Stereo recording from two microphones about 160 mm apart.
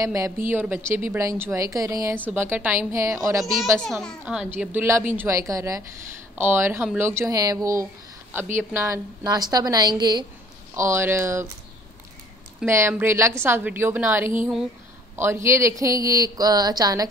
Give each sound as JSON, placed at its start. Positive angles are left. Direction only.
{"t": 0.0, "sound": "a woman's voice", "side_deg": -20}
{"t": 4.2, "sound": "a woman's voice", "side_deg": -5}
{"t": 12.6, "sound": "a woman's voice", "side_deg": -15}